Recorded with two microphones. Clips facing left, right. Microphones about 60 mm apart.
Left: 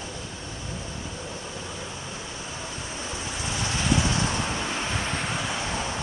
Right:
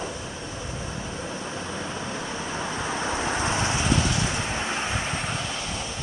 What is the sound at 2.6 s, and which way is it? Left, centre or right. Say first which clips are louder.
Vehicle: right 8 dB; right.